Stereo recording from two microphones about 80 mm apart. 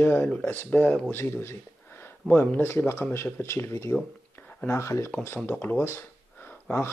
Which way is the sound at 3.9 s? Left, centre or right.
Centre.